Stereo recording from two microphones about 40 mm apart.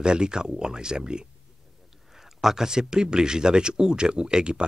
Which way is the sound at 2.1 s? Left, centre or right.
Centre.